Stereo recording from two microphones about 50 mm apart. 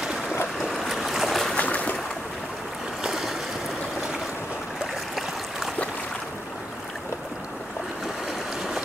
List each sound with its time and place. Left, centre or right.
0.6 s boat: centre
1.5 s a sound: left
3.0 s boat: centre